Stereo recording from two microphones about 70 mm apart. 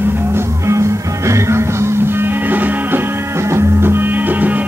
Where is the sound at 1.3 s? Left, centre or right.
Right.